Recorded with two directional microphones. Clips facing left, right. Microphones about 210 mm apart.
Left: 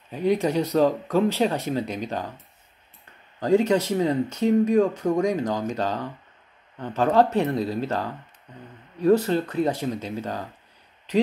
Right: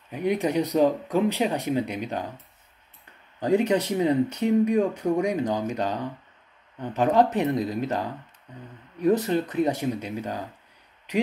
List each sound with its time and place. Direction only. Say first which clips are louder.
0.1 s speech: left 2 dB; 15° right (ahead or behind)
3.3 s speech: left 2 dB; 15° right (ahead or behind)
9.0 s a man's voice: left 2 dB; 15° right (ahead or behind)